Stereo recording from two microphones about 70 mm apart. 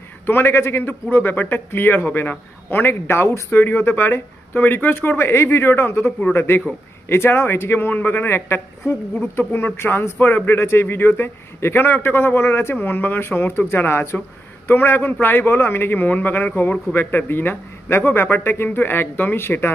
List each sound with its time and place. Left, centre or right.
0.3 s a man's voice: left
10.1 s a man's voice: left